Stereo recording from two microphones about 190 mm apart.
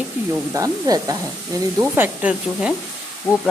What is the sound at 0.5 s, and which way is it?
Snake, 20° right (ahead or behind).